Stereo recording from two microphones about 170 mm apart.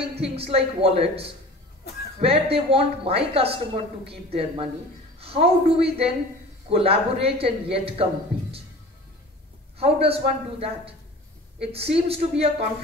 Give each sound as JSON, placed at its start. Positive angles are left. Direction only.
{"t": 0.0, "sound": "speech", "side_deg": -35}
{"t": 9.8, "sound": "speech", "side_deg": -35}